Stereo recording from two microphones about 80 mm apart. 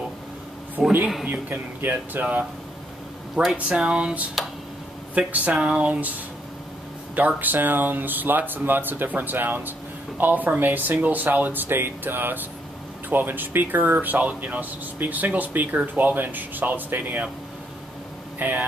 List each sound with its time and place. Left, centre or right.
0.8 s speech: centre
3.5 s speech: centre
7.2 s speech: right
18.4 s speech: right